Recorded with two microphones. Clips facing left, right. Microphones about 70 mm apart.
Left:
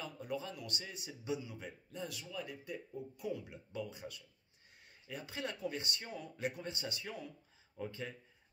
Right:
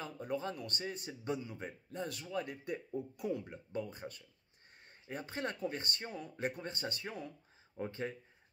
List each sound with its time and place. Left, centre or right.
0.0 s speech: right